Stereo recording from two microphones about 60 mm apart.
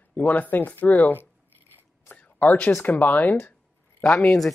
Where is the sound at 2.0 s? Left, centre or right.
Left.